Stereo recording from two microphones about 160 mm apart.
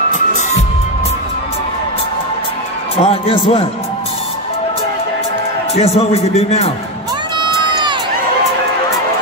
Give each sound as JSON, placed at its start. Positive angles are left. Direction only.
{"t": 0.1, "sound": "music", "side_deg": 50}
{"t": 3.0, "sound": "a man's voice", "side_deg": 35}
{"t": 5.8, "sound": "a man's voice", "side_deg": 40}
{"t": 7.3, "sound": "crowd", "side_deg": -30}